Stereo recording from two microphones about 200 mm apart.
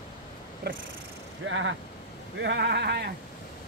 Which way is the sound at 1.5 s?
70° right (ahead or behind).